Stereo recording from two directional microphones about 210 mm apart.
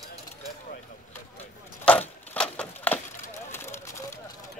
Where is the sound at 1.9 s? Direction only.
5° left (ahead or behind).